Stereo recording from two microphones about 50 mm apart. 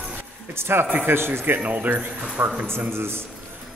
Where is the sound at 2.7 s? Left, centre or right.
Right.